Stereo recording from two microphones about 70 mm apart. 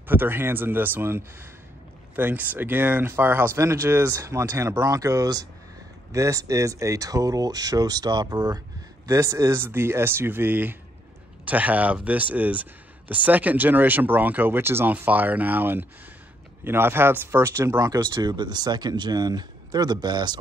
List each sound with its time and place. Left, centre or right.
0.1 s speech: right
4.1 s speech: right
6.1 s speech: right
9.1 s speech: right
18.0 s speech: right